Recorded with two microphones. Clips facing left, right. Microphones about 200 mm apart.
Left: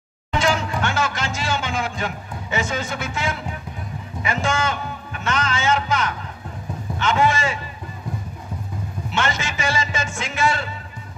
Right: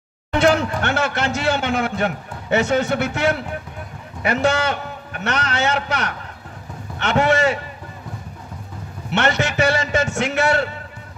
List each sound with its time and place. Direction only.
0.3 s a man's voice: 60° right (ahead or behind)
9.1 s a man's voice: 65° right (ahead or behind)